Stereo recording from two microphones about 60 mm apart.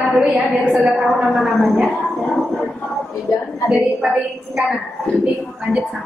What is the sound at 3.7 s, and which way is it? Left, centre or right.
A woman's voice, centre.